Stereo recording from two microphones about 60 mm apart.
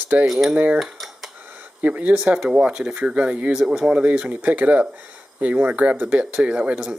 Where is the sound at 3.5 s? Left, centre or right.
Centre.